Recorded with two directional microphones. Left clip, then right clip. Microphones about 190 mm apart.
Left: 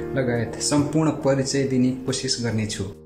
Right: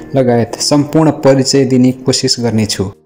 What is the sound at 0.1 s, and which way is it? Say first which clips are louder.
A man's voice: right 14 dB; 30° right (ahead or behind).